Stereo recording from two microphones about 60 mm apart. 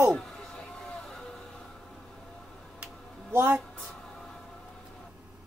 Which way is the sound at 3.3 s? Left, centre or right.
Right.